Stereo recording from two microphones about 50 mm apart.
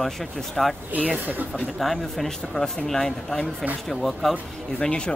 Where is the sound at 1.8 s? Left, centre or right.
Centre.